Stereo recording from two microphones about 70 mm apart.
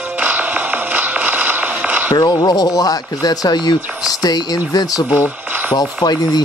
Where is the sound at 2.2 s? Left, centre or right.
Left.